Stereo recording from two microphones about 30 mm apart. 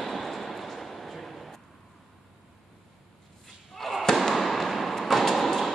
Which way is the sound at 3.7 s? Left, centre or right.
Centre.